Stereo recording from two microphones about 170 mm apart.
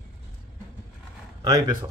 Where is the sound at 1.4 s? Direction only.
25° right (ahead or behind).